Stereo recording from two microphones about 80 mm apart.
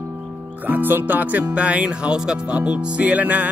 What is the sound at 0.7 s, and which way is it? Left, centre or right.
Music, right.